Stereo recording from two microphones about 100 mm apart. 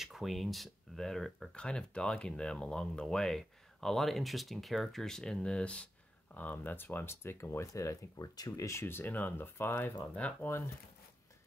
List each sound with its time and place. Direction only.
0.0 s speech: centre (ahead or behind)